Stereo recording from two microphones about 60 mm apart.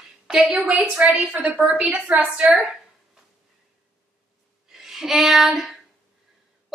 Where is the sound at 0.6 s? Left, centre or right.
Centre.